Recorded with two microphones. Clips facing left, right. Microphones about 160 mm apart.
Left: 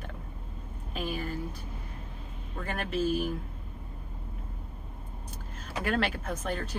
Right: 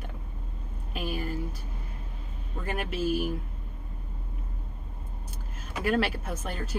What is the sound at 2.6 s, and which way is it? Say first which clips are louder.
Speech: even; 5° right (ahead or behind).